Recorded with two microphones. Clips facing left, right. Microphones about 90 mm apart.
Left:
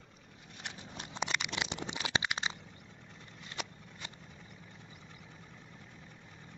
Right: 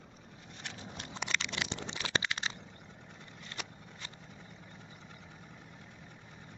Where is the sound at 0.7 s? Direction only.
15° left (ahead or behind).